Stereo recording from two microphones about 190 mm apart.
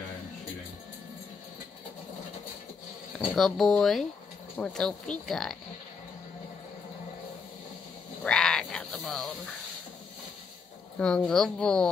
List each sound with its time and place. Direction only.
3.3 s speech: centre (ahead or behind)
8.2 s sheep: 5° left (ahead or behind)
11.0 s speech: 5° left (ahead or behind)